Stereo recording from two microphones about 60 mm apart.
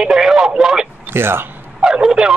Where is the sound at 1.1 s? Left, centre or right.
Right.